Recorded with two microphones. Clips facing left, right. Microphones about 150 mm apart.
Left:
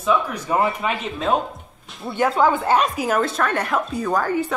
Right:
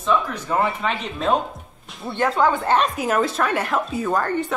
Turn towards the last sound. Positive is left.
turn(degrees=0)  # may be behind; listen again after turning